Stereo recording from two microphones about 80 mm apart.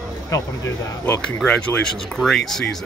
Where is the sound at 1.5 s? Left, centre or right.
Centre.